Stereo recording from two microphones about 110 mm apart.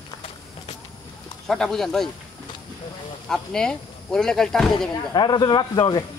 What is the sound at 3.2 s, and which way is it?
Speech, 5° left (ahead or behind).